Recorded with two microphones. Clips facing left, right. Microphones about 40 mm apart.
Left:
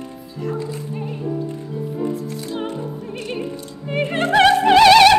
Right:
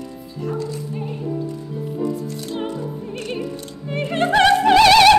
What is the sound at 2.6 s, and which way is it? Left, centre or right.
Music, left.